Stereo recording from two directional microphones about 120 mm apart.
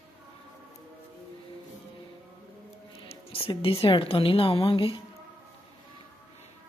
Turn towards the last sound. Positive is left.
turn(degrees=45)  # may be behind; listen again after turning